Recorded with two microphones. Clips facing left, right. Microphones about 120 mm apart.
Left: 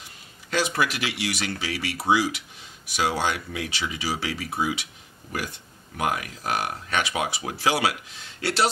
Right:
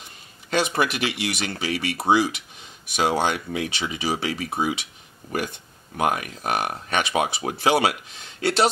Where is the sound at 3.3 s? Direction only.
25° right (ahead or behind).